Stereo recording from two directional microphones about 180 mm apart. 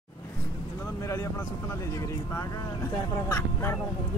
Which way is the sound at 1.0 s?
15° left (ahead or behind).